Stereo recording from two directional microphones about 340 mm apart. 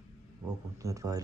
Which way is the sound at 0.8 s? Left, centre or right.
Centre.